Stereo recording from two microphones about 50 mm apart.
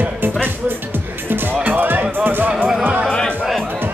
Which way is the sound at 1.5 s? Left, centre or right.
Right.